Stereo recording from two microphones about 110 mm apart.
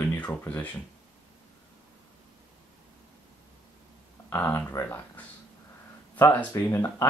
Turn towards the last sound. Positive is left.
turn(degrees=25)  # may be behind; listen again after turning